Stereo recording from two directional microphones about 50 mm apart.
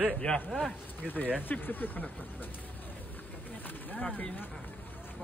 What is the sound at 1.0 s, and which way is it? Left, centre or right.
Speech, left.